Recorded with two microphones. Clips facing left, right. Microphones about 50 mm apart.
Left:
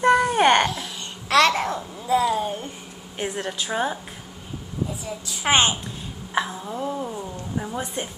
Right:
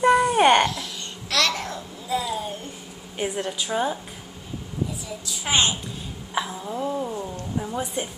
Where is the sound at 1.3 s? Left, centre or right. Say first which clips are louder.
Left 6 dB; left.